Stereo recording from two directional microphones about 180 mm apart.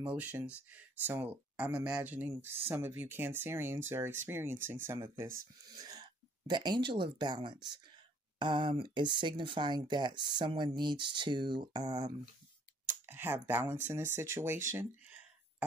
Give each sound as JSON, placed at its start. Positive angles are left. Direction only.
{"t": 0.0, "sound": "speech", "side_deg": -10}